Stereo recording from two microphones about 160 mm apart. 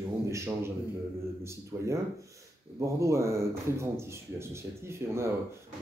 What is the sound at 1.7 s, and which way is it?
A man's voice, 15° right (ahead or behind).